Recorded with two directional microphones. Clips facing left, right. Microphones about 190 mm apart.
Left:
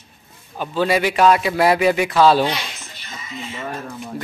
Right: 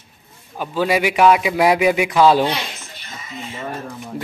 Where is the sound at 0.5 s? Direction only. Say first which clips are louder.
Even; 10° right (ahead or behind).